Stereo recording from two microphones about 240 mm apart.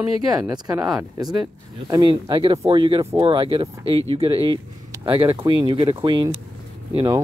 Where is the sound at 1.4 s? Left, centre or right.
Centre.